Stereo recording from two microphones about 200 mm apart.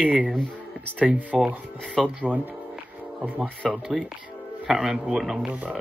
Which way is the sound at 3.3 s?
Centre (ahead or behind).